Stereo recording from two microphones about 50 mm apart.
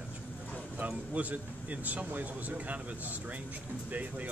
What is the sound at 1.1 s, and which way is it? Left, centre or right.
Speech, right.